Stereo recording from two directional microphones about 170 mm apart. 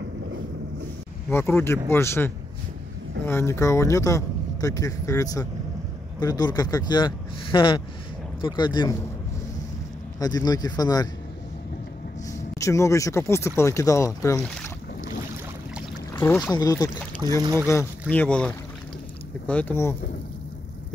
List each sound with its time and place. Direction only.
1.3 s speech: 15° left (ahead or behind)
10.1 s speech: 20° left (ahead or behind)
12.3 s speech: 20° left (ahead or behind)
16.1 s boat: 15° left (ahead or behind)
16.5 s speech: 20° left (ahead or behind)
17.4 s speech: 20° right (ahead or behind)
18.1 s speech: 10° left (ahead or behind)